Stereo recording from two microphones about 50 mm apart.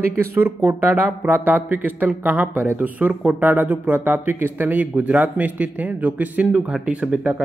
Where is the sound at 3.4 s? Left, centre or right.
Right.